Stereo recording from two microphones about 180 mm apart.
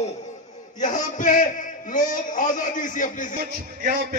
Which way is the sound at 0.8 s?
45° left (ahead or behind).